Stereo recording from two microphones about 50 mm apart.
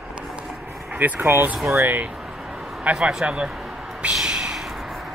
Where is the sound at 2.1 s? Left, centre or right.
Centre.